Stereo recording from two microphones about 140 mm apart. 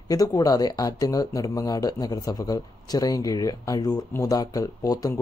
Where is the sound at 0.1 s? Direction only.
25° left (ahead or behind).